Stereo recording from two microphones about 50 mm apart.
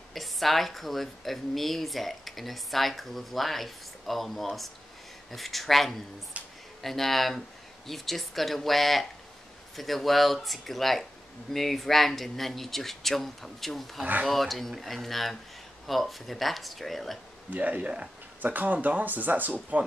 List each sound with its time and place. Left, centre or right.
0.1 s speech: centre
6.4 s a sound: right
6.8 s speech: centre
17.5 s speech: right